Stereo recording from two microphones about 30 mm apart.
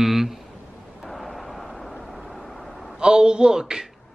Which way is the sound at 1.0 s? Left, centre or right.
Centre.